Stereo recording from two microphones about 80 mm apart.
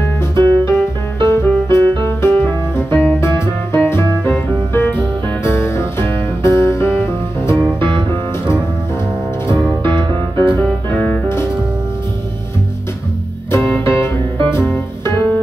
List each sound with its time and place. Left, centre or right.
0.0 s music: left
9.8 s music: right
10.5 s music: left
13.5 s music: left